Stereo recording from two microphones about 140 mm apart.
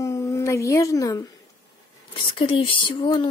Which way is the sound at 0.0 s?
20° left (ahead or behind).